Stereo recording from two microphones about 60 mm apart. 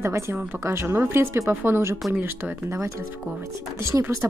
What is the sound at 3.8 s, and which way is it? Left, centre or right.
Speech, right.